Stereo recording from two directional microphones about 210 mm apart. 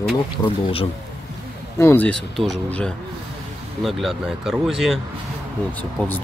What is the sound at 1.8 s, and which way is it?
Speech, 10° left (ahead or behind).